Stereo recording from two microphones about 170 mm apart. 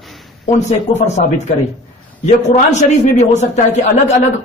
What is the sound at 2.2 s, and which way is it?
A man's voice, 40° left (ahead or behind).